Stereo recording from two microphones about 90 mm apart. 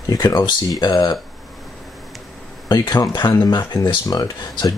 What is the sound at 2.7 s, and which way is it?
Speech, 45° left (ahead or behind).